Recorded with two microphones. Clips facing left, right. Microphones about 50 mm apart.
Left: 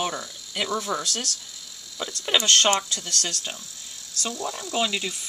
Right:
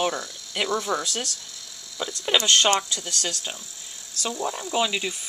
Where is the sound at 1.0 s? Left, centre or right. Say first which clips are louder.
Right 1 dB; right.